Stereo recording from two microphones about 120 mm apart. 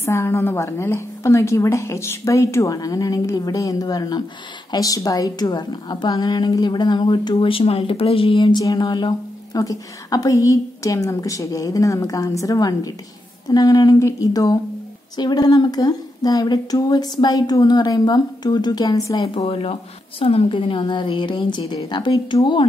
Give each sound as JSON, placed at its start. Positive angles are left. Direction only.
{"t": 0.0, "sound": "a woman's voice", "side_deg": 20}
{"t": 19.3, "sound": "a woman's voice", "side_deg": 50}